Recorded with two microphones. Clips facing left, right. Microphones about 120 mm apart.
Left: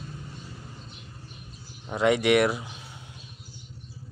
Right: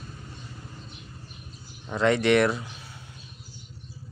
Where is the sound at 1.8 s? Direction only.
10° left (ahead or behind).